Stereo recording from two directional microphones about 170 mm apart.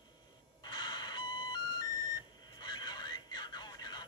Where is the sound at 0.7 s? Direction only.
25° left (ahead or behind).